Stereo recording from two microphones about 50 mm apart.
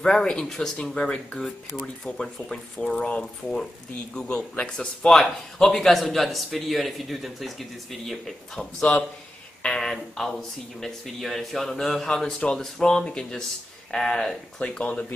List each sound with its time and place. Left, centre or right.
0.0 s a man's voice: centre
14.7 s speech: left